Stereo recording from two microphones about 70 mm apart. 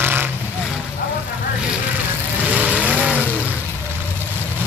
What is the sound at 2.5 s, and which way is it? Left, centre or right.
Vehicle, right.